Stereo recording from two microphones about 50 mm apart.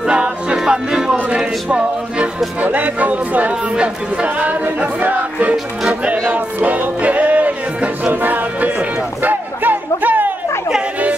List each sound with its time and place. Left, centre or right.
0.0 s music: centre
1.1 s speech: right
2.6 s speech: right
6.0 s music: right